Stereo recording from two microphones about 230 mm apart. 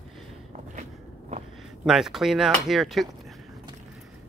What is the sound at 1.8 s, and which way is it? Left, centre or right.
Speech, centre.